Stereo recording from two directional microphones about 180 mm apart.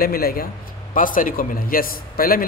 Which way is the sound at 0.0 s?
55° left (ahead or behind).